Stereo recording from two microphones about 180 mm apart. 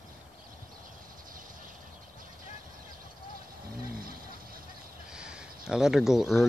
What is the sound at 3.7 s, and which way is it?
Vehicle, 55° right (ahead or behind).